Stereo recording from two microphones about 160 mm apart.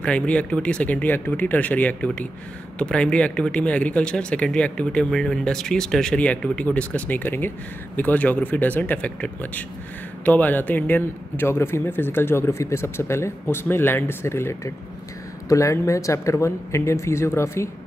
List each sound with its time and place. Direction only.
0.0 s speech: 5° left (ahead or behind)